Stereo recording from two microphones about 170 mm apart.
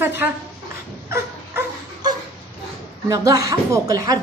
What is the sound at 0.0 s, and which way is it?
Speech, 10° right (ahead or behind).